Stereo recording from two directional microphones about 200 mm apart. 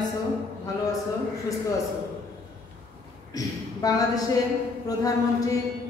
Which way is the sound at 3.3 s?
15° left (ahead or behind).